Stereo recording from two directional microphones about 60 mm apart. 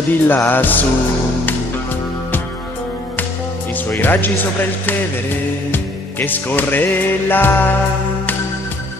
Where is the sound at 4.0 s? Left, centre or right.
Left.